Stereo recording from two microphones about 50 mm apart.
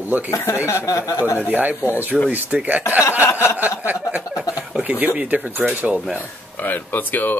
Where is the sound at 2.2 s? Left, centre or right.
Right.